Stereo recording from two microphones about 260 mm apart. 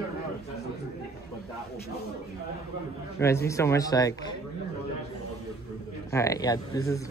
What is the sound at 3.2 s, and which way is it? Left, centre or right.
Speech, centre.